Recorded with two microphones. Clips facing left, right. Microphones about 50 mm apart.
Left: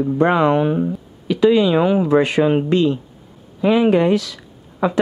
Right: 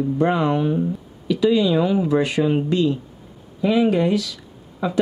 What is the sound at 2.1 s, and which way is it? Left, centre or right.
Speech, left.